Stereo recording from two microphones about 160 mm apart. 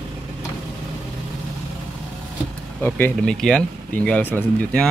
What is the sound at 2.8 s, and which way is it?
Speech, 10° left (ahead or behind).